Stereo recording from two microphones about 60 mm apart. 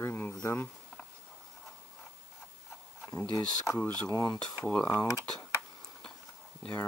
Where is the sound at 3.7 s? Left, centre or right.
Centre.